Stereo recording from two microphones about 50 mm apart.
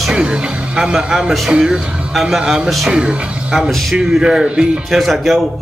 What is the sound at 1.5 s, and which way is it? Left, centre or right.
Speech, centre.